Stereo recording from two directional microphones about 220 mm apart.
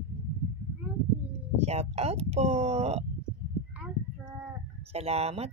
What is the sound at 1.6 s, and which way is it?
Speech, 30° right (ahead or behind).